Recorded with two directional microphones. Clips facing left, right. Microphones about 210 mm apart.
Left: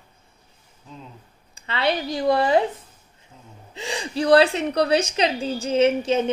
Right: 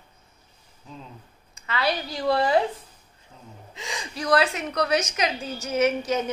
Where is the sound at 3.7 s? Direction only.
30° left (ahead or behind).